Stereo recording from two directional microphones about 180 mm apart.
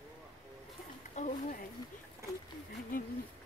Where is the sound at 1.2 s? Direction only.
40° left (ahead or behind).